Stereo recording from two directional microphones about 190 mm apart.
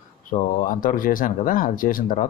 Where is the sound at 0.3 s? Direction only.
45° left (ahead or behind).